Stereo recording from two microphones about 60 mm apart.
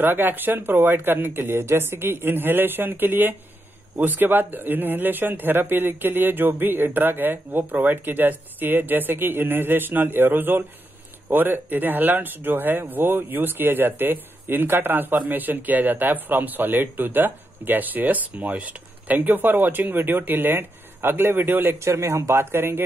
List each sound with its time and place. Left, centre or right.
0.0 s speech: right
21.7 s speech: right